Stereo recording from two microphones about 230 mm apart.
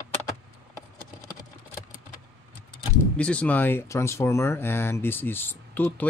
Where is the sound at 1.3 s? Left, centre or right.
Centre.